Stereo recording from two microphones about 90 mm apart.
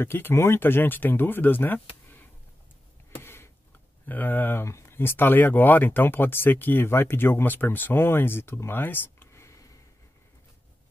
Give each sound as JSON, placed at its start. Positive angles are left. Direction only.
{"t": 0.0, "sound": "speech", "side_deg": 25}
{"t": 3.2, "sound": "a sound", "side_deg": 25}
{"t": 4.0, "sound": "speech", "side_deg": 20}